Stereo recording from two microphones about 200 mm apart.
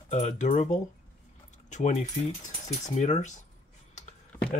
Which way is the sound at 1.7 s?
35° left (ahead or behind).